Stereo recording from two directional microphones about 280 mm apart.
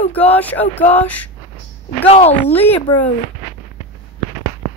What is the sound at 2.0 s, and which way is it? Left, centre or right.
Speech, left.